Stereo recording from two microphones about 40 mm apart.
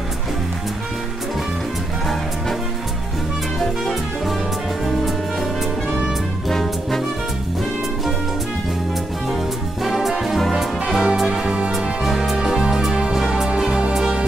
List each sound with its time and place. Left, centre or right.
4.8 s music: centre
6.5 s brass instrument: centre
9.8 s music: centre
11.2 s music: right
11.7 s music: centre
13.6 s music: centre